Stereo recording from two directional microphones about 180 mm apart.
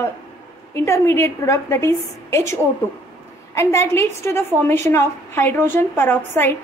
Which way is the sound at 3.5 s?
15° left (ahead or behind).